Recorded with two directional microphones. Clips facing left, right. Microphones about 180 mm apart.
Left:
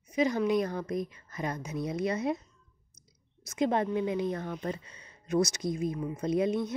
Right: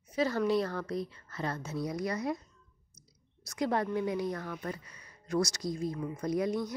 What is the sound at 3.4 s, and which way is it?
A woman's voice, 20° left (ahead or behind).